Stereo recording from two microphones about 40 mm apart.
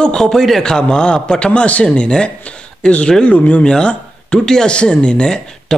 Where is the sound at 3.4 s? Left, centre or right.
Left.